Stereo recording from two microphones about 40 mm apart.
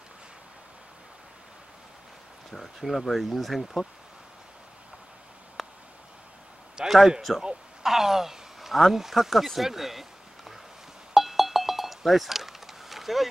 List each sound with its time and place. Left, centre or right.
2.5 s speech: centre
5.6 s a sound: centre
7.1 s speech: centre
11.1 s cowbell: centre